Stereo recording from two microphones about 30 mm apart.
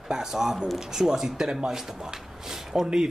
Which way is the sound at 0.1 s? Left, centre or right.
Centre.